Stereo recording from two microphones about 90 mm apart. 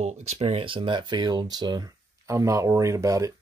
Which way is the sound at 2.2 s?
35° right (ahead or behind).